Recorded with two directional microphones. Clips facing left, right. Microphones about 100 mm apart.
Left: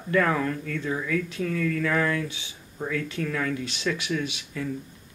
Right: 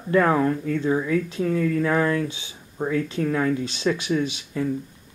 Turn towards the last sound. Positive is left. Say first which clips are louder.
# right 6 dB
turn(degrees=-30)  # may be behind; listen again after turning